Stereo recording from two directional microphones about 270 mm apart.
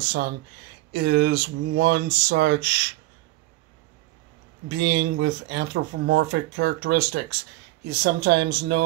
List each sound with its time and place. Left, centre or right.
0.9 s speech: right
4.6 s speech: right